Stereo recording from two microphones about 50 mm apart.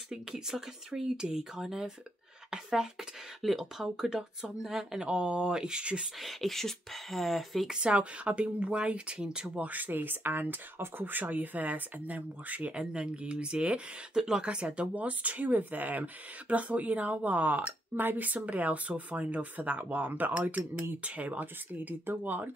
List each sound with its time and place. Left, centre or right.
0.1 s speech: centre
6.2 s speech: centre
7.8 s speech: right
9.6 s speech: right
12.7 s speech: right